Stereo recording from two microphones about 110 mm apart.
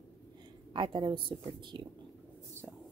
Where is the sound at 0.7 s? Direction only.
45° right (ahead or behind).